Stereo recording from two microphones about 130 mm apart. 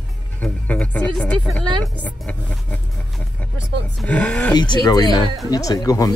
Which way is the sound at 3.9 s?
10° left (ahead or behind).